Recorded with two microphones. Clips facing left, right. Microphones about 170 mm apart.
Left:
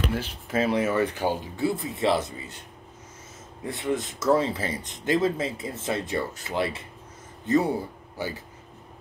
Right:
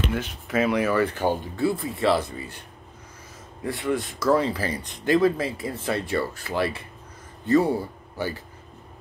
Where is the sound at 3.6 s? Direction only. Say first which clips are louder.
Right 2 dB; 20° left (ahead or behind).